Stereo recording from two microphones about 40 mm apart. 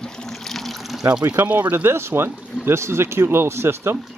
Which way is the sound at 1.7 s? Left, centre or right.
Right.